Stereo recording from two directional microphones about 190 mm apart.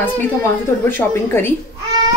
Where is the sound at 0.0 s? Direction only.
10° left (ahead or behind).